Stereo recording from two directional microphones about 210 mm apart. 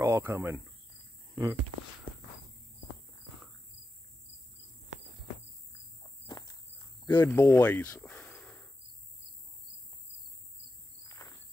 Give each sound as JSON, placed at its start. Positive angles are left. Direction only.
{"t": 0.0, "sound": "speech", "side_deg": -15}
{"t": 6.2, "sound": "walk", "side_deg": 20}
{"t": 7.1, "sound": "cricket", "side_deg": 10}
{"t": 11.1, "sound": "insect", "side_deg": 15}